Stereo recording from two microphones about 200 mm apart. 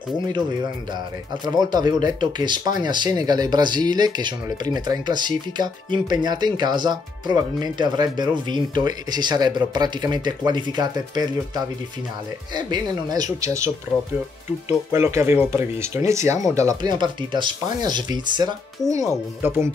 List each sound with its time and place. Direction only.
1.4 s speech: 20° right (ahead or behind)
14.9 s speech: 15° right (ahead or behind)